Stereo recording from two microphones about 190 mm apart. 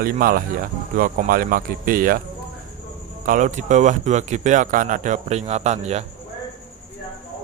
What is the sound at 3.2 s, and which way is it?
Speech, 40° right (ahead or behind).